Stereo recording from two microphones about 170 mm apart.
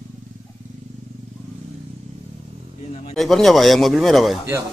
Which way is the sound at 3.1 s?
Centre (ahead or behind).